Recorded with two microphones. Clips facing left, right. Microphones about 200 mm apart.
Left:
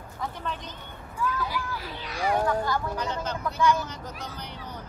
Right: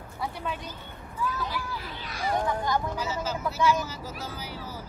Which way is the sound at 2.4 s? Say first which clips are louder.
Left 1 dB; 15° right (ahead or behind).